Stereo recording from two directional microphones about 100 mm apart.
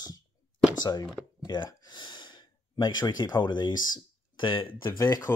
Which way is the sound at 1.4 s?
45° left (ahead or behind).